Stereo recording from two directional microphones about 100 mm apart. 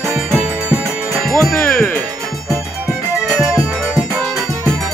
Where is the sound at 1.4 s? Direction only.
20° left (ahead or behind).